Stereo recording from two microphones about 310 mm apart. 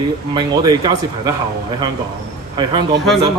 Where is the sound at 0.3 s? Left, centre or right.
Centre.